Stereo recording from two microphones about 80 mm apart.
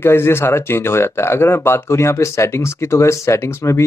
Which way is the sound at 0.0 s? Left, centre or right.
Left.